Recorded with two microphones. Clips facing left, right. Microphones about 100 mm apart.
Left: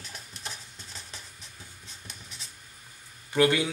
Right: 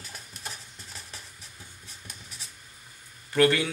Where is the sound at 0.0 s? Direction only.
5° right (ahead or behind).